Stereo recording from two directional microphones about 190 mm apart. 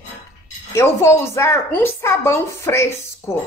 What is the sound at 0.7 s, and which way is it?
A woman's voice, 15° left (ahead or behind).